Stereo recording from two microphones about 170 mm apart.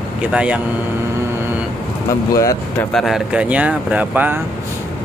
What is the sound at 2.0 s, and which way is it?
Speech, 20° left (ahead or behind).